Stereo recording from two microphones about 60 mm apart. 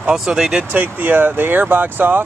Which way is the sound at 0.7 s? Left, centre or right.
Right.